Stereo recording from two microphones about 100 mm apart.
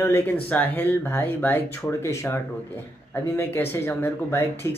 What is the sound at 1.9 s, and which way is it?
Speech, 30° left (ahead or behind).